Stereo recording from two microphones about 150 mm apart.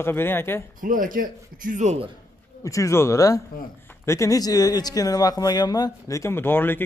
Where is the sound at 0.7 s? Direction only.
65° right (ahead or behind).